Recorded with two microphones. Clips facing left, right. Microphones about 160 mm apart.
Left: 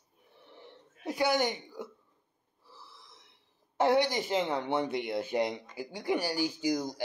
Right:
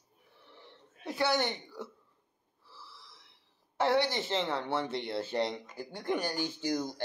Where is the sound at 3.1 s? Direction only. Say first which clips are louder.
Left 2 dB; 15° left (ahead or behind).